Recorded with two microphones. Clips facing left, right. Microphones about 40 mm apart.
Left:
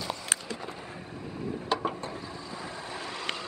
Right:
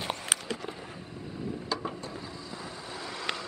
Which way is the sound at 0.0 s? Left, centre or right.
Right.